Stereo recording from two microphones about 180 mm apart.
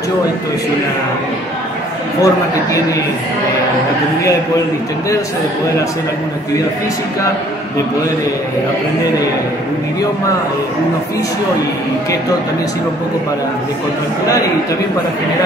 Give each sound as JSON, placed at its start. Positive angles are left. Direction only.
{"t": 2.2, "sound": "a man's voice", "side_deg": 20}